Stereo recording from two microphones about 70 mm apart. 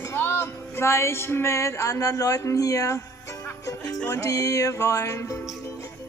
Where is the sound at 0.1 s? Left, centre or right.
Left.